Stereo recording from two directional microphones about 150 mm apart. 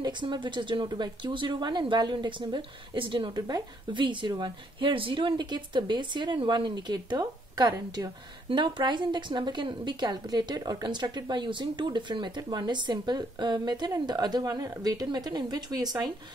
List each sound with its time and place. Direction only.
0.0 s speech: 30° right (ahead or behind)